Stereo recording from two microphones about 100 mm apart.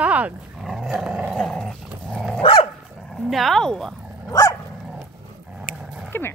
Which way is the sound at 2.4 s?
65° left (ahead or behind).